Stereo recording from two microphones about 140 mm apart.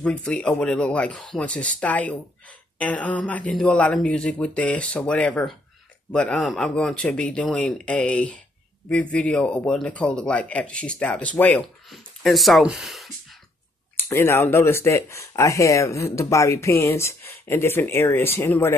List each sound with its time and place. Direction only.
0.0 s speech: 5° left (ahead or behind)
13.9 s speech: 15° left (ahead or behind)